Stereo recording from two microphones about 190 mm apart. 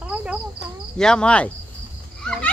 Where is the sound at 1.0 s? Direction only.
5° left (ahead or behind).